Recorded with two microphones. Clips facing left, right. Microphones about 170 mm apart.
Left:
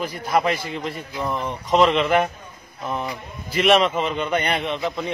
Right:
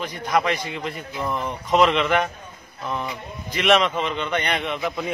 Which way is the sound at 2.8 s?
5° left (ahead or behind).